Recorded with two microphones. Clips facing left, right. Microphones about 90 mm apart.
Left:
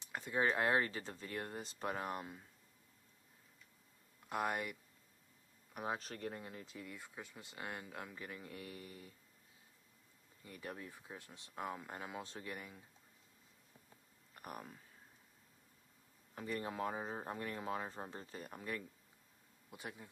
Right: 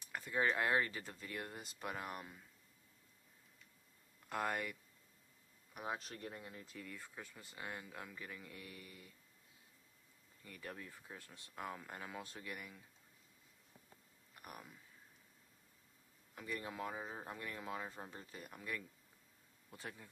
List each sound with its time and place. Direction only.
0.0 s a sound: 20° left (ahead or behind)
0.5 s speech: 30° left (ahead or behind)
4.3 s speech: 15° left (ahead or behind)
5.8 s speech: 40° left (ahead or behind)
6.5 s speech: 5° left (ahead or behind)
7.4 s speech: 30° left (ahead or behind)
10.4 s speech: 25° left (ahead or behind)
14.4 s speech: 40° left (ahead or behind)
16.3 s speech: 35° left (ahead or behind)
19.7 s speech: 15° left (ahead or behind)